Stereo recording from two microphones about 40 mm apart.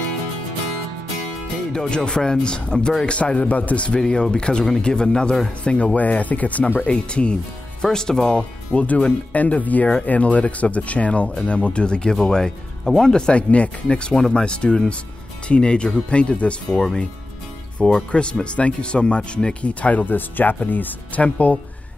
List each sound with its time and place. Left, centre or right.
1.7 s speech: left
5.9 s speech: left
6.8 s speech: left
7.8 s speech: centre
8.4 s speech: left; by 13.3 s centre
13.3 s speech: left
17.7 s speech: left
20.1 s speech: left
21.2 s speech: left